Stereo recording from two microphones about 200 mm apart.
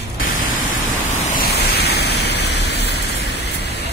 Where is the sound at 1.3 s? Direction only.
55° left (ahead or behind).